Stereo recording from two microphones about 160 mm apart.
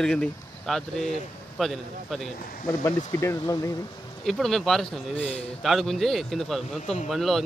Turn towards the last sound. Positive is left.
turn(degrees=0)  # may be behind; listen again after turning